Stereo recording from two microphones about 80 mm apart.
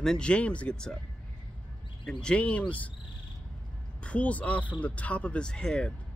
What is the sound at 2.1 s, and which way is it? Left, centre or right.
Speech, centre.